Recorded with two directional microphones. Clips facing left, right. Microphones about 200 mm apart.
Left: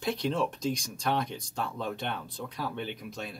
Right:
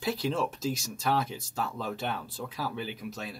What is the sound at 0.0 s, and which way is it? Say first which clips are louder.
Speech: even; 5° right (ahead or behind).